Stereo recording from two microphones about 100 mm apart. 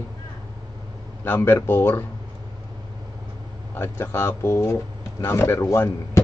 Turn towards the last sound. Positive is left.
turn(degrees=30)  # may be behind; listen again after turning